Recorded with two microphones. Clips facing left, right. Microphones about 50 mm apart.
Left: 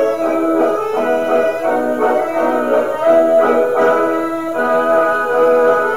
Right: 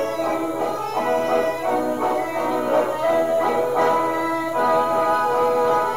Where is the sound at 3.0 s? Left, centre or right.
Left.